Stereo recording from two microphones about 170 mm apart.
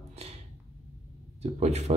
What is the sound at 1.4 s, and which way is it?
Speech, 40° right (ahead or behind).